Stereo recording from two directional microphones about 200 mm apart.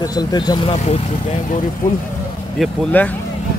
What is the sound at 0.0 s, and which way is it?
Speech, 20° left (ahead or behind).